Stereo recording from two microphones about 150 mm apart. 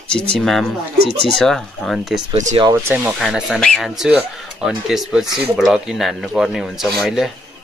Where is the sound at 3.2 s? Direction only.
Centre (ahead or behind).